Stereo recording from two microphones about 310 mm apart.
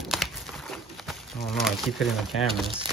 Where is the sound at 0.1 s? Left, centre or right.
Centre.